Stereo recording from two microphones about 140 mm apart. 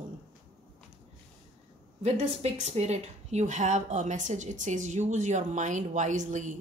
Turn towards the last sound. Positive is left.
turn(degrees=-60)  # may be behind; listen again after turning